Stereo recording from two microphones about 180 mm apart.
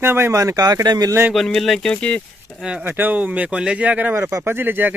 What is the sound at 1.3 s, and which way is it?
Speech, centre (ahead or behind).